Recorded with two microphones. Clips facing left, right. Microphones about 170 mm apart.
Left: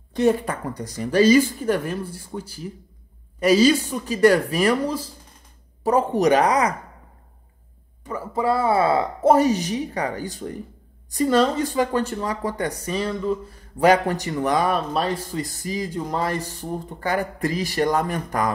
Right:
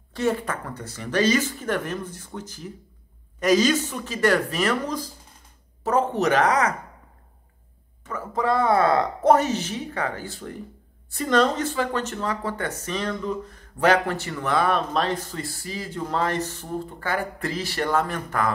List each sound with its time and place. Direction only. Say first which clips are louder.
0.1 s speech: left 5 dB; 15° left (ahead or behind)
8.0 s speech: left 2 dB; 10° left (ahead or behind)